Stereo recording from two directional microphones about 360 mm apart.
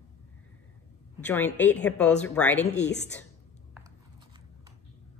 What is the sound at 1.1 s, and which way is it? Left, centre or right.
Speech, centre.